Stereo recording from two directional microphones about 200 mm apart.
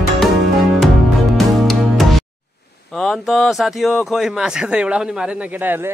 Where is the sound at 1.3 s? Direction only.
Centre (ahead or behind).